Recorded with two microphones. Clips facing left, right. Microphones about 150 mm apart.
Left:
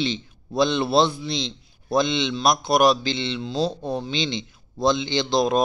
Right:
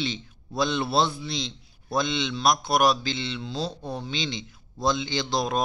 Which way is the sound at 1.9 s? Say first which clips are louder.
Left 5 dB; 5° right (ahead or behind).